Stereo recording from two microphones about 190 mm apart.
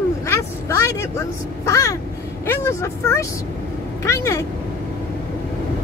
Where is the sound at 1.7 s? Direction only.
15° left (ahead or behind).